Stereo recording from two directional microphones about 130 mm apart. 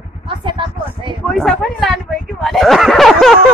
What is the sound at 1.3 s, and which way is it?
Speech, centre (ahead or behind).